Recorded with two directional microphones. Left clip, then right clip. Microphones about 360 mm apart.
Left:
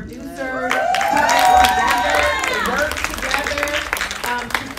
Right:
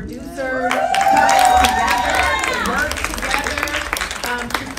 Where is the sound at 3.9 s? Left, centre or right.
Centre.